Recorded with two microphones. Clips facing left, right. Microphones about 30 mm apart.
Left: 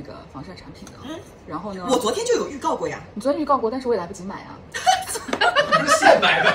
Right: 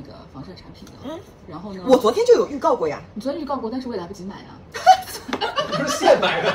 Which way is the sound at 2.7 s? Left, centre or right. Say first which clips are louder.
Right 3 dB; right.